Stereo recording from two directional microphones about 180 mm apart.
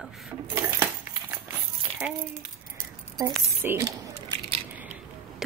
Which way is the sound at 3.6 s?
15° right (ahead or behind).